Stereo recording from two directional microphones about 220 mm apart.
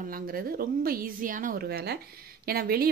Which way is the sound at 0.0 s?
40° right (ahead or behind).